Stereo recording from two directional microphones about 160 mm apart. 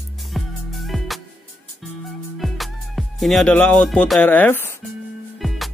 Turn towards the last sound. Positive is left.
turn(degrees=15)  # may be behind; listen again after turning